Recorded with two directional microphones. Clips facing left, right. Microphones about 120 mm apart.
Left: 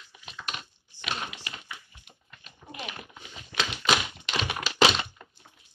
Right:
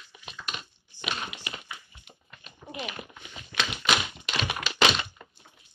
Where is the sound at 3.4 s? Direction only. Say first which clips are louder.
Left 1 dB; 30° left (ahead or behind).